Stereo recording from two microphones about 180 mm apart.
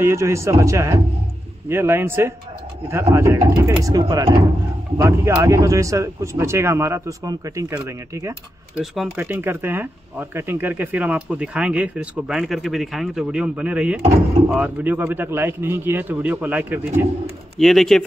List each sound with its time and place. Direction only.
0.0 s speech: 15° right (ahead or behind)
8.7 s speech: 5° right (ahead or behind)
17.6 s speech: centre (ahead or behind)